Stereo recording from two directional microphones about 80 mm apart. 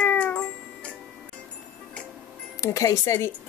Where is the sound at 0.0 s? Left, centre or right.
Centre.